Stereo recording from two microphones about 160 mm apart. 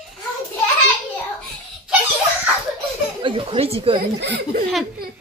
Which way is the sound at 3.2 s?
35° right (ahead or behind).